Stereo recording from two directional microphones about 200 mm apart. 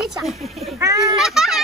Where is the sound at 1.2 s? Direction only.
Centre (ahead or behind).